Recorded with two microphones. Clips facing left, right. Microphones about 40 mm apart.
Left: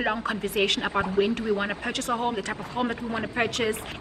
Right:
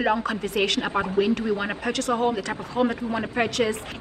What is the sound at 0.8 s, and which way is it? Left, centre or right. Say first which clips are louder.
Speech: right 1 dB; centre.